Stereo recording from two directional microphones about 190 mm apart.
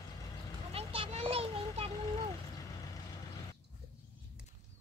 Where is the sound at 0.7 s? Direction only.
30° right (ahead or behind).